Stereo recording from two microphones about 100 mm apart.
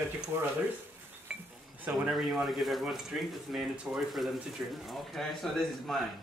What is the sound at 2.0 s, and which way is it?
A man's voice, centre (ahead or behind).